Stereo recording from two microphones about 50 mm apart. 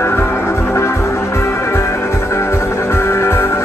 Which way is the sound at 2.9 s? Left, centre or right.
Left.